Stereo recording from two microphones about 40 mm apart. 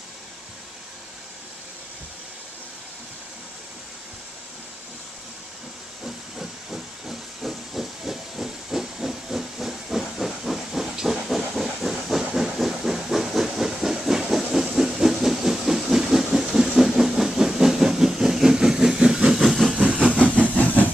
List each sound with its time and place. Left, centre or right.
6.0 s hiss: centre
11.5 s steam: centre
12.8 s hiss: centre
14.0 s steam: centre
16.5 s train: centre
19.8 s vehicle: right
20.2 s vehicle: left
20.5 s train: left